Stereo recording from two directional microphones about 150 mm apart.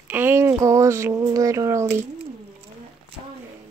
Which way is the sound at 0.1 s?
15° right (ahead or behind).